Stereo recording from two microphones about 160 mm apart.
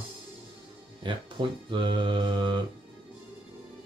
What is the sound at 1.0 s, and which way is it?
Speech, 30° right (ahead or behind).